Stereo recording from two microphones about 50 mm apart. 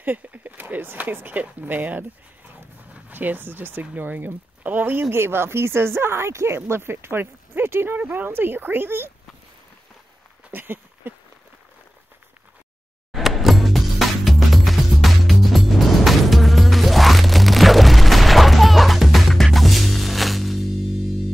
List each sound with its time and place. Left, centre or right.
0.0 s speech: right
3.8 s speech: right
5.1 s speech: right
10.5 s a sound: right
13.1 s music: centre